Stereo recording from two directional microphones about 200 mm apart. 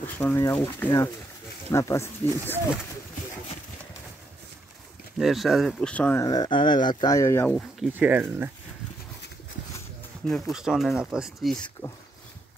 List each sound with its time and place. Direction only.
0.0 s speech: 15° left (ahead or behind)
5.1 s speech: centre (ahead or behind)
6.2 s speech: 20° left (ahead or behind)
7.5 s speech: 5° right (ahead or behind)
10.2 s speech: centre (ahead or behind)